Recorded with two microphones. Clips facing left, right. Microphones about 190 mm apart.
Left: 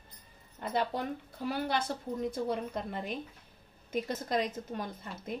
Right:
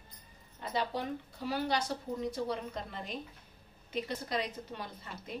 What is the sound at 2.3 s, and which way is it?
Speech, 50° left (ahead or behind).